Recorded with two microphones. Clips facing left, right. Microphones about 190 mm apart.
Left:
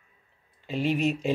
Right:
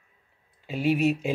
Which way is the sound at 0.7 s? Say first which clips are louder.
Right 2 dB; 10° right (ahead or behind).